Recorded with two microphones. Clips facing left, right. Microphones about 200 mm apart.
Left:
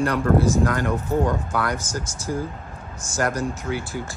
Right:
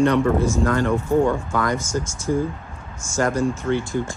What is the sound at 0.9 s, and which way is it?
Speech, 10° right (ahead or behind).